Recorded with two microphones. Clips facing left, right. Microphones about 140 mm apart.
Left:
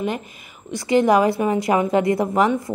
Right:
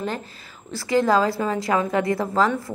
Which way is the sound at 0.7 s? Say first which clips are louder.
Left 3 dB; 20° left (ahead or behind).